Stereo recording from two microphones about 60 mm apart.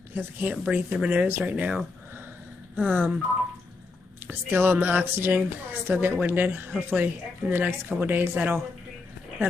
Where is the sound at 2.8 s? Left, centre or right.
Right.